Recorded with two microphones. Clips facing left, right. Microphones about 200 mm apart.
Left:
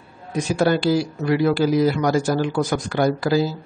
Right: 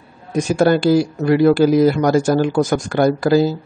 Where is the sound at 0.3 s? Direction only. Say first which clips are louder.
Right 5 dB; 45° right (ahead or behind).